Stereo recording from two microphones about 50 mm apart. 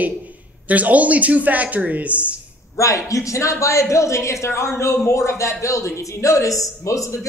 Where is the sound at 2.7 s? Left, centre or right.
Left.